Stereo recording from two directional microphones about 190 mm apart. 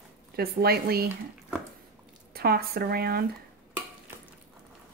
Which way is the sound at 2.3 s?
55° right (ahead or behind).